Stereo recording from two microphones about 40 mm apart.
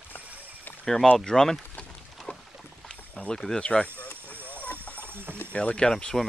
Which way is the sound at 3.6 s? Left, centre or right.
Left.